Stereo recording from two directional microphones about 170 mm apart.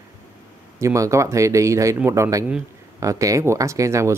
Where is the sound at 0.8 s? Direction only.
20° right (ahead or behind).